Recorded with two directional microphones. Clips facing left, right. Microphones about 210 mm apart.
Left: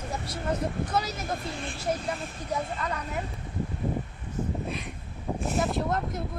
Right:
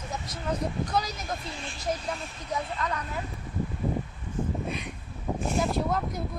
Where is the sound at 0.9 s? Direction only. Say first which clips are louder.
Even; 5° left (ahead or behind).